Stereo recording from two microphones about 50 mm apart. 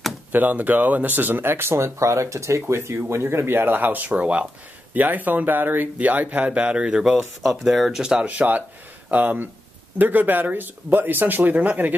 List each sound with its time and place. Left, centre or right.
0.3 s speech: right
2.0 s speech: right
2.6 s speech: right; by 7.2 s centre
7.4 s speech: centre
8.3 s speech: right